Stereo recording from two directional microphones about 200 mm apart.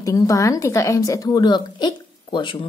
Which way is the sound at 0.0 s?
15° left (ahead or behind).